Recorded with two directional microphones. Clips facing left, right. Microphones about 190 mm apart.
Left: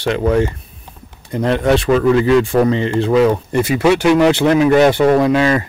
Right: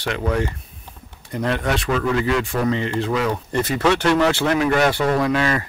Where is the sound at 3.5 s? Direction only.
10° left (ahead or behind).